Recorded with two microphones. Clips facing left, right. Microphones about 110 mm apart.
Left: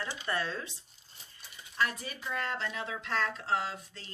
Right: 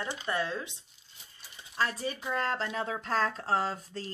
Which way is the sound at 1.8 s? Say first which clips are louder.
Right 2 dB; 30° right (ahead or behind).